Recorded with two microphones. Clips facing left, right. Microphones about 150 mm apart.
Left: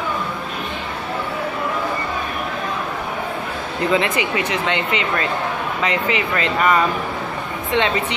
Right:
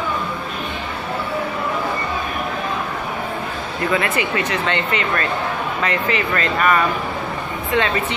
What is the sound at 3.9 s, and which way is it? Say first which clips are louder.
Speech: left 1 dB; 20° left (ahead or behind).